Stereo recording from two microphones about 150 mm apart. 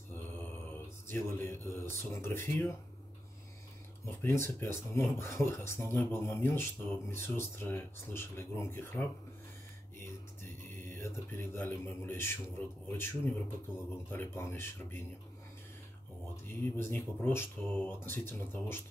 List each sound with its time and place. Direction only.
0.1 s speech: 10° left (ahead or behind)
4.0 s speech: 15° left (ahead or behind)
10.8 s speech: 15° left (ahead or behind)
16.6 s speech: 15° left (ahead or behind)